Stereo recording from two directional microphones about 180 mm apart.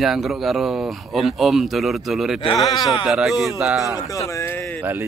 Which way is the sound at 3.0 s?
Centre (ahead or behind).